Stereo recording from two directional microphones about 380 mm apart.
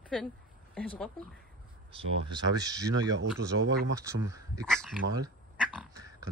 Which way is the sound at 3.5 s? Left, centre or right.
Right.